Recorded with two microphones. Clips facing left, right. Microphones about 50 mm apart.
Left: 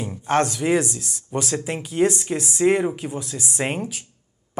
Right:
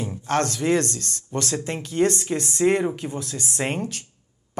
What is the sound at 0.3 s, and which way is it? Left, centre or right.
Speech, centre.